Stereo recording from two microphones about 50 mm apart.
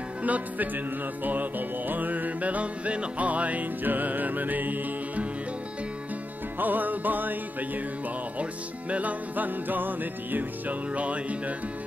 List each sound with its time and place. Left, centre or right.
0.2 s music: right
6.6 s music: right
8.9 s music: right